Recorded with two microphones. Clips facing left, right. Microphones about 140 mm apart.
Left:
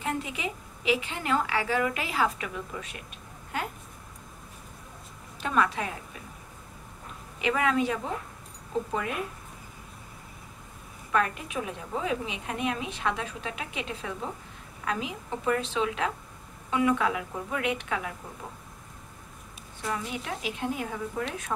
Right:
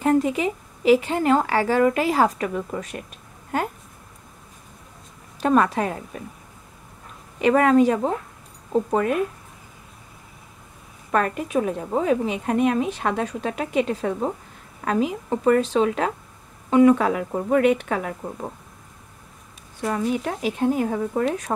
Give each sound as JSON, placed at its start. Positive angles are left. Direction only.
{"t": 0.0, "sound": "a woman's voice", "side_deg": -40}
{"t": 5.4, "sound": "a woman's voice", "side_deg": -45}
{"t": 7.3, "sound": "a woman's voice", "side_deg": -45}
{"t": 11.1, "sound": "a woman's voice", "side_deg": -45}
{"t": 19.8, "sound": "a woman's voice", "side_deg": -40}